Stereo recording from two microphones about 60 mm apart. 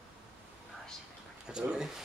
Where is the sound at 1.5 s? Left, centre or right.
Centre.